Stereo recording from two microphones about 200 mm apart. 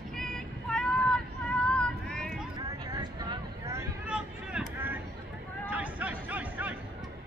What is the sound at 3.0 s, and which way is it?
Vehicle, 20° right (ahead or behind).